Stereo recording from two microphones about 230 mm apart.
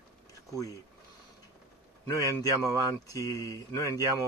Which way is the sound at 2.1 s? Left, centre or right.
Centre.